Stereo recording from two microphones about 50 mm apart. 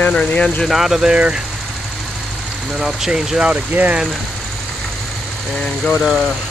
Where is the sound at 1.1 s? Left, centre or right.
Right.